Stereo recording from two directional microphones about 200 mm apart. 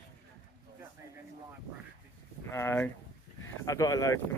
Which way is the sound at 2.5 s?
10° left (ahead or behind).